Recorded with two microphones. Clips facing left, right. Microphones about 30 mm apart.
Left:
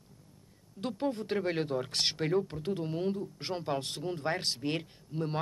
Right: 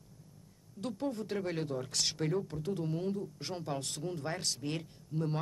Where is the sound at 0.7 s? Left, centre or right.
Left.